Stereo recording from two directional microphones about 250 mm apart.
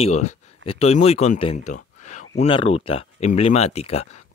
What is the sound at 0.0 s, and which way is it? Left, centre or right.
Speech, left.